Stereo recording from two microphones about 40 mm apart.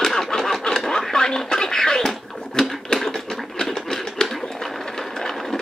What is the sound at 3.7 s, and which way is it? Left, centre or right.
Sewing machine, centre.